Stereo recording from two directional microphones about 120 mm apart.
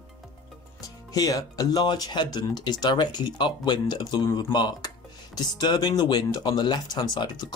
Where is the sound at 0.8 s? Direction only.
30° left (ahead or behind).